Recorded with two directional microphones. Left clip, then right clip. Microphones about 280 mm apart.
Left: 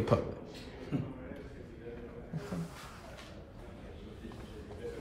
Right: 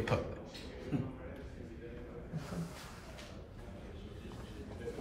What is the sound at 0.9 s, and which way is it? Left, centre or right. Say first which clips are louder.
Speech: left 1 dB; centre.